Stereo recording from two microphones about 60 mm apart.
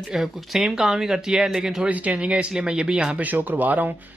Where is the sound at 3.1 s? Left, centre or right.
Right.